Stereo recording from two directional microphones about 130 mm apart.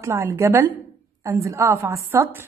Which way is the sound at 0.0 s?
20° right (ahead or behind).